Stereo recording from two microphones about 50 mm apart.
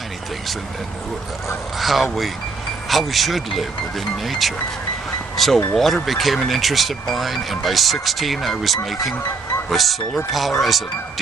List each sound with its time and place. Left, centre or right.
1.8 s speech: centre